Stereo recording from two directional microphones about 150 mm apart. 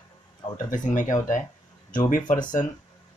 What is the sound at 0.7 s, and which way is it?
Speech, 60° left (ahead or behind).